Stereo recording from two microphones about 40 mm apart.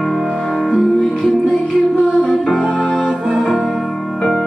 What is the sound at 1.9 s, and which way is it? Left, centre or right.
Music, left.